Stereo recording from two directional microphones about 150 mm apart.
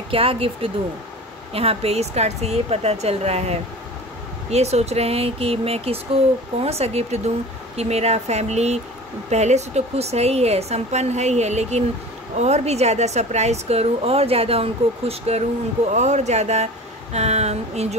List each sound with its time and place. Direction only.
0.1 s a woman's voice: 40° right (ahead or behind)